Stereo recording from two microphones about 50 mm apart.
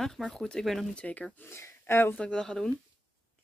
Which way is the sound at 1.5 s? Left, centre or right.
Left.